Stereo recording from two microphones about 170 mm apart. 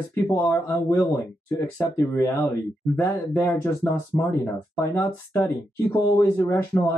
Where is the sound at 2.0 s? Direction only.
15° left (ahead or behind).